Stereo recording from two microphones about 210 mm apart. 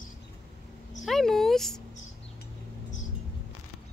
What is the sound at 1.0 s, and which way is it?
Speech, centre (ahead or behind).